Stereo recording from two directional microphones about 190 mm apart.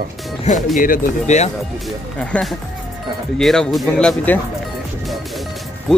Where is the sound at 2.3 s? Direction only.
5° left (ahead or behind).